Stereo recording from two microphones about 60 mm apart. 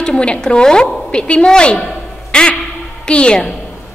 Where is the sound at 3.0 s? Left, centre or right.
Centre.